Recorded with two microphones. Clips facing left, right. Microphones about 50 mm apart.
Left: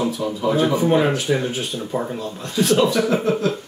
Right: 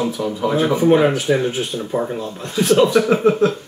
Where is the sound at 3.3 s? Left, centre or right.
Right.